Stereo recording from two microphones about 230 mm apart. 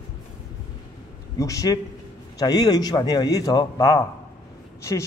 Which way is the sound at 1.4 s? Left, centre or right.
Centre.